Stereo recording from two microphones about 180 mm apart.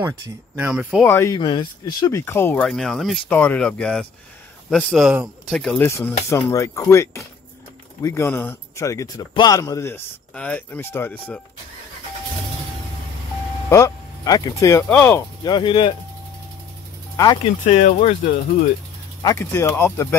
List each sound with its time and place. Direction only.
0.6 s speech: 5° right (ahead or behind)
1.0 s speech: 15° left (ahead or behind)
1.4 s speech: 25° left (ahead or behind); by 5.8 s centre (ahead or behind)
5.8 s speech: 15° left (ahead or behind)
13.7 s speech: 20° left (ahead or behind)
15.4 s speech: 25° left (ahead or behind)
17.4 s speech: 40° left (ahead or behind)
19.2 s speech: 15° left (ahead or behind)